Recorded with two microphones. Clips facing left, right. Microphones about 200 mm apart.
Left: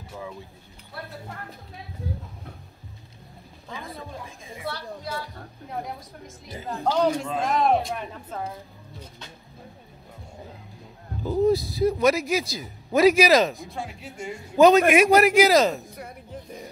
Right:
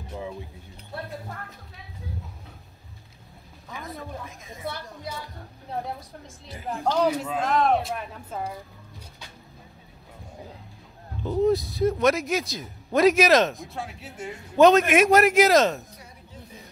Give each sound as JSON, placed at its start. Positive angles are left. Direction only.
{"t": 4.6, "sound": "a woman's voice", "side_deg": -20}
{"t": 7.0, "sound": "speech", "side_deg": -5}
{"t": 11.2, "sound": "speech", "side_deg": 0}
{"t": 15.9, "sound": "a sound", "side_deg": 55}